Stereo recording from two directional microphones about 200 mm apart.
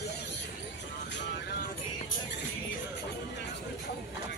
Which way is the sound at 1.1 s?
60° left (ahead or behind).